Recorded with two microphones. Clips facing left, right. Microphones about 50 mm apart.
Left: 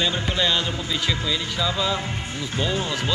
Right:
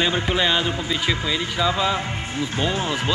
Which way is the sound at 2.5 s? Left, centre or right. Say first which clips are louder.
Right 1 dB; centre.